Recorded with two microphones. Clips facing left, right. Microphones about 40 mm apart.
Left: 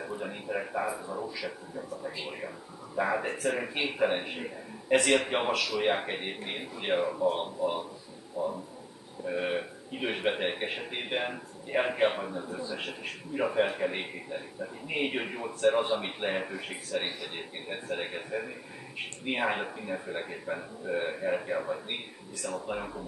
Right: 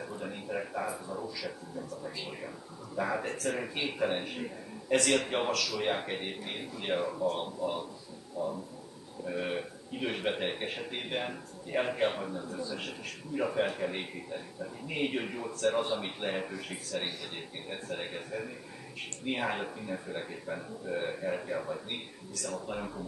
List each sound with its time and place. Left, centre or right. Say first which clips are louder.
0.0 s a man's voice: left 3 dB; centre